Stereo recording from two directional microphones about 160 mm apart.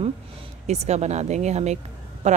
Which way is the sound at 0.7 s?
45° right (ahead or behind).